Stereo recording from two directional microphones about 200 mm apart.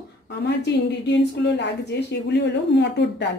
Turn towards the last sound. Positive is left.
turn(degrees=60)  # may be behind; listen again after turning